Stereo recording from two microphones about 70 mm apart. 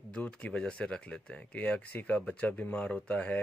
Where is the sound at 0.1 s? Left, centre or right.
Centre.